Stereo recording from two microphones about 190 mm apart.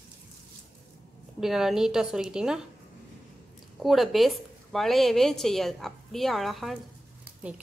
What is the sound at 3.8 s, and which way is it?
A woman's voice, centre (ahead or behind).